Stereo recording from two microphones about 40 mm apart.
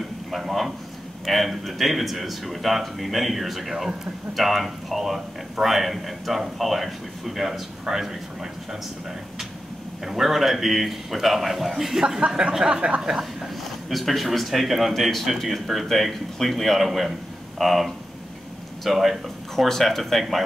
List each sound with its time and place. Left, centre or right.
0.3 s speech: centre
10.0 s speech: centre
12.3 s a sound: centre
13.2 s speech: centre